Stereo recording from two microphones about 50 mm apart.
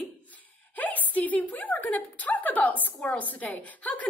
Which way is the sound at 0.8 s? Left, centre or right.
Left.